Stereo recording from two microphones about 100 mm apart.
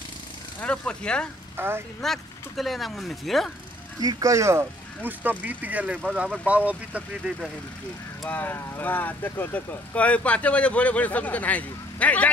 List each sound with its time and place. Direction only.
0.6 s speech: 10° left (ahead or behind)
1.6 s speech: 20° right (ahead or behind)
2.0 s speech: centre (ahead or behind)
4.0 s speech: 35° right (ahead or behind); by 7.3 s 15° right (ahead or behind)
8.3 s speech: 20° left (ahead or behind)